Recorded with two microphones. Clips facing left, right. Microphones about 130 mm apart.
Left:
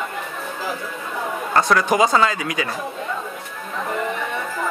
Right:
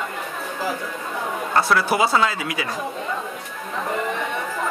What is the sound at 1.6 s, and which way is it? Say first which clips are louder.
Speech: left 2 dB; 5° right (ahead or behind).